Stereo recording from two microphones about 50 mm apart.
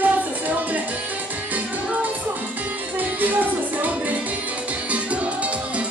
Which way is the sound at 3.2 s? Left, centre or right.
Right.